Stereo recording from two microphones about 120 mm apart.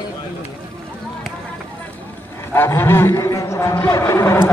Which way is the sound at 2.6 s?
20° left (ahead or behind).